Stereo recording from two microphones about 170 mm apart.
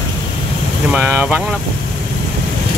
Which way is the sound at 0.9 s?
10° right (ahead or behind).